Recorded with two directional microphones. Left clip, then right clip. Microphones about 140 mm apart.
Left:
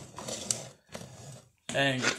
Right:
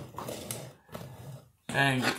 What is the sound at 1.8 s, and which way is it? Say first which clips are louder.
Speech: right 1 dB; 30° right (ahead or behind).